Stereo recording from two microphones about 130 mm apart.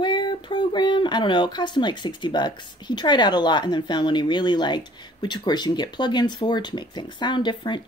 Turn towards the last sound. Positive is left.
turn(degrees=35)  # may be behind; listen again after turning